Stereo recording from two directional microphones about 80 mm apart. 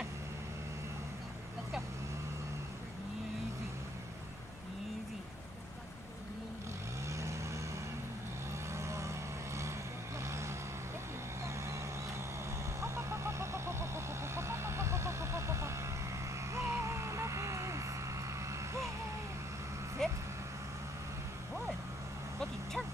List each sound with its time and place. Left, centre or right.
7.1 s vehicle: right
8.7 s vehicle: right
10.2 s vehicle: right
12.8 s vehicle: right
16.5 s music: right
20.0 s vehicle: centre